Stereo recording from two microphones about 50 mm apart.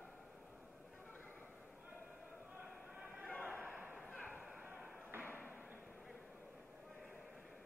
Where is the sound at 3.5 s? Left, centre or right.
Right.